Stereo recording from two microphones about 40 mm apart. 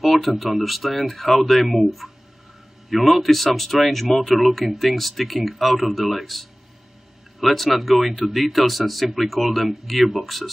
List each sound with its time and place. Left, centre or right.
0.0 s speech: centre